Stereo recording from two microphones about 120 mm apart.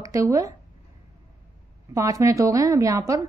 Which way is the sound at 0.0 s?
25° right (ahead or behind).